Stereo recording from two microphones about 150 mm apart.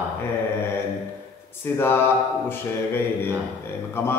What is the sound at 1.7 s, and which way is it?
A man's voice, 15° left (ahead or behind).